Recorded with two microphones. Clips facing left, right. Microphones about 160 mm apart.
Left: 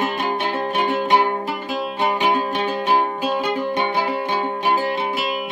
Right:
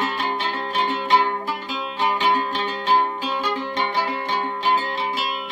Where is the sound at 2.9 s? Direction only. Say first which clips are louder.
Even; 55° left (ahead or behind).